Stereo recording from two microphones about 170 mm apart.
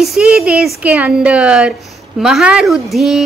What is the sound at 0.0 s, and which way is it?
Speech, 5° right (ahead or behind).